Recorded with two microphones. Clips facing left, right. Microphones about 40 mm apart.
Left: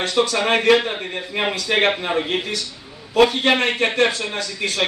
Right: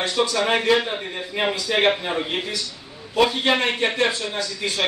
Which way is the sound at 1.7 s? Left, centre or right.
Left.